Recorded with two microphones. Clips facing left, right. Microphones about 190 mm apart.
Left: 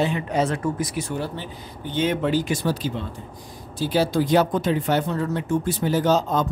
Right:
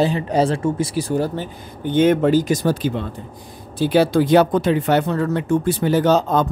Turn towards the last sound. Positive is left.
turn(degrees=-65)  # may be behind; listen again after turning